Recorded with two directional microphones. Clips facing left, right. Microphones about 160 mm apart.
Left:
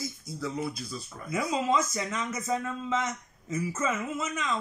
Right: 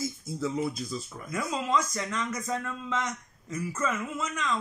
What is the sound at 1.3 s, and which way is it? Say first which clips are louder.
A man's voice: left 2 dB; 5° left (ahead or behind).